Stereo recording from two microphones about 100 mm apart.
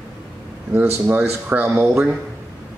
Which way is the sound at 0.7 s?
20° right (ahead or behind).